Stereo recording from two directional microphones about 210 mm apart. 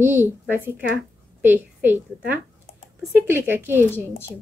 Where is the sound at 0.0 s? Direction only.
10° right (ahead or behind).